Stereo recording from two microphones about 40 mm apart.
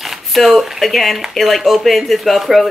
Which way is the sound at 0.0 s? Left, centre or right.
Centre.